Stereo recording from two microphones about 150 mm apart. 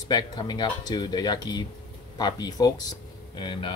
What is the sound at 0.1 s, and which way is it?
Speech, 30° left (ahead or behind).